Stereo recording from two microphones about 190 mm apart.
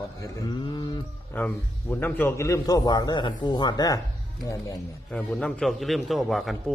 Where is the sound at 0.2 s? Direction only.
20° left (ahead or behind).